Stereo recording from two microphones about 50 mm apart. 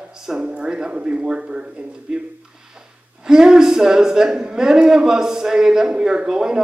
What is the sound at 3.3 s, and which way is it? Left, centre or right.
Speech, centre.